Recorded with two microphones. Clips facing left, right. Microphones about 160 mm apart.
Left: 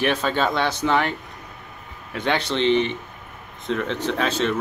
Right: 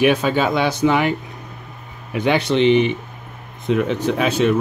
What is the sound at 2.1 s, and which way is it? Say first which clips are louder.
Speech: right 6 dB; 10° right (ahead or behind).